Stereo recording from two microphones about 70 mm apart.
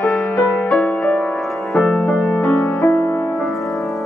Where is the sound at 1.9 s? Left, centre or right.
Centre.